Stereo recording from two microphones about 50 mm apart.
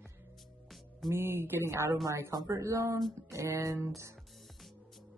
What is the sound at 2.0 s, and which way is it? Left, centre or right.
Speech, right.